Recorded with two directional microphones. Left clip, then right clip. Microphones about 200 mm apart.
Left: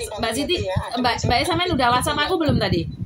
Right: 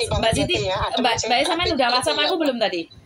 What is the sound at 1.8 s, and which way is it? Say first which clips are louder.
Mantra: even; 10° left (ahead or behind).